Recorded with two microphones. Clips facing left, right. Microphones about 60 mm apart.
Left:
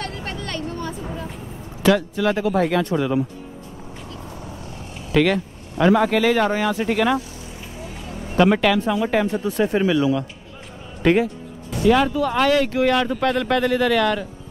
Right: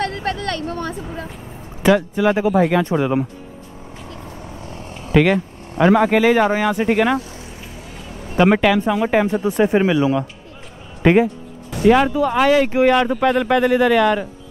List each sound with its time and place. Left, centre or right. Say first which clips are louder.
0.0 s vehicle: right 7 dB; right
1.8 s speech: right 3 dB; centre
2.5 s speech: right 4 dB; centre
2.8 s speech: right 3 dB; right
4.1 s vehicle: right 2 dB; right
5.1 s speech: right 3 dB; centre
8.5 s speech: right 3 dB; centre